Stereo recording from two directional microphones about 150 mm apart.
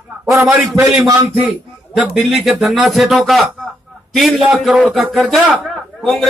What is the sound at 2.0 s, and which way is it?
Speech, centre (ahead or behind).